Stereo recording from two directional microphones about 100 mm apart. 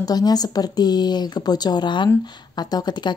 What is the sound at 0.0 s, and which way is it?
A woman's voice, 40° left (ahead or behind).